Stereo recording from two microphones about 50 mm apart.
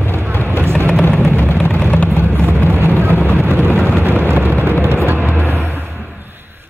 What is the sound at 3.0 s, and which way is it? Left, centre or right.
Vehicle, right.